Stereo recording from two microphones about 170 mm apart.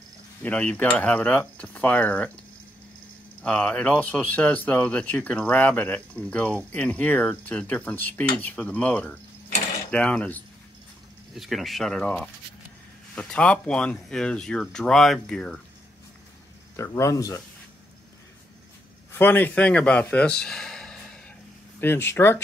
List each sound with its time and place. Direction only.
0.4 s speech: 10° left (ahead or behind)
3.4 s speech: 5° left (ahead or behind)
16.7 s speech: 15° left (ahead or behind)
19.1 s speech: 10° left (ahead or behind)